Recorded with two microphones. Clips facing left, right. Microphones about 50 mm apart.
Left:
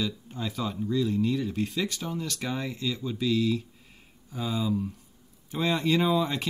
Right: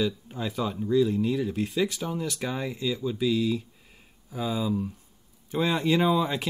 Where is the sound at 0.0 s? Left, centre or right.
Centre.